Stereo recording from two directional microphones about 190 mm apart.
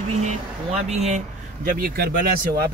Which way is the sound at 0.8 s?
35° right (ahead or behind).